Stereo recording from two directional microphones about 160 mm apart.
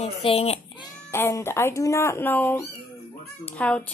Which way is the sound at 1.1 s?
15° left (ahead or behind).